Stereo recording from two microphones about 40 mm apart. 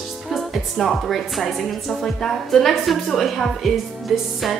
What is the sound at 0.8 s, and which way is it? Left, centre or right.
Speech, centre.